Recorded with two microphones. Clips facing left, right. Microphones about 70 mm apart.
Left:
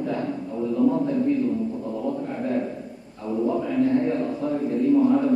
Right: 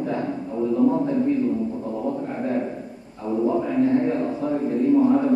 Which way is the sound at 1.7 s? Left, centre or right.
Centre.